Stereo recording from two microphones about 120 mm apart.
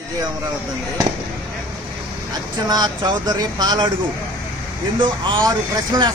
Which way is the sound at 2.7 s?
35° right (ahead or behind).